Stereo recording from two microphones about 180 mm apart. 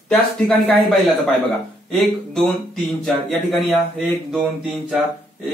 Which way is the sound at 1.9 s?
Centre (ahead or behind).